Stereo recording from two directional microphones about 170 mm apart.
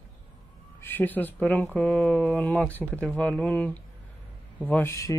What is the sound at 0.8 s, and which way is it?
Speech, 10° left (ahead or behind).